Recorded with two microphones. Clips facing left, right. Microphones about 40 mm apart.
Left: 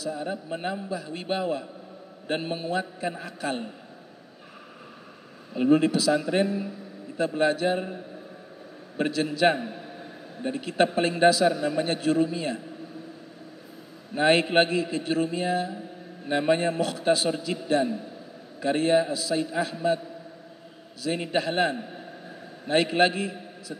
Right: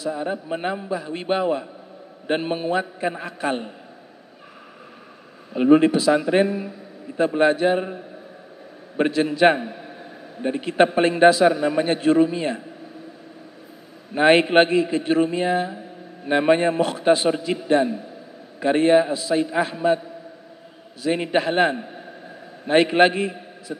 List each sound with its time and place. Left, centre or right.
0.0 s a man's voice: right
5.5 s a man's voice: right
8.9 s a man's voice: right
14.1 s a man's voice: right
21.0 s a man's voice: right